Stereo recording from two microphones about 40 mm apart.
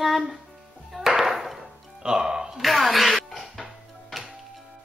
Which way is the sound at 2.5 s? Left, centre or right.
Centre.